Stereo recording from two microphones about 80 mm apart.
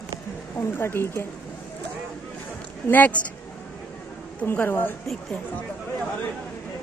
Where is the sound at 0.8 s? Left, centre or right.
Left.